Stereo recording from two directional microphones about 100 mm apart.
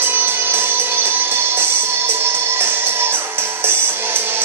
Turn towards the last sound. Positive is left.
turn(degrees=-20)  # may be behind; listen again after turning